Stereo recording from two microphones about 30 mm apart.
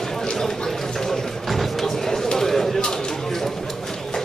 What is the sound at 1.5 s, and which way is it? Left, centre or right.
Music, centre.